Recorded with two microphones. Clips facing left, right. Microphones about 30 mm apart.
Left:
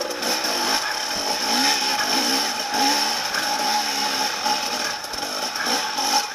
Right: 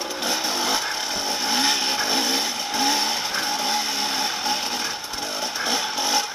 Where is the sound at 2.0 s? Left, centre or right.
Left.